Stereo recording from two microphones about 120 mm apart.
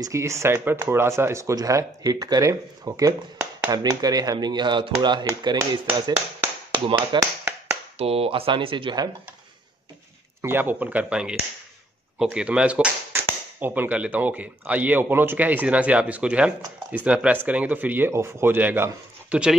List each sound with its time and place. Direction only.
0.0 s speech: 25° right (ahead or behind); by 7.2 s 40° right (ahead or behind)
8.0 s speech: 55° right (ahead or behind); by 9.1 s 35° right (ahead or behind)
10.4 s speech: 15° right (ahead or behind)
12.4 s speech: 10° right (ahead or behind)
19.2 s dog: 10° right (ahead or behind)